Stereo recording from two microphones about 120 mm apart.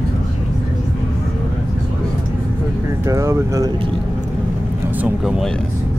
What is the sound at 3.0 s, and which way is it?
Speech, 25° right (ahead or behind).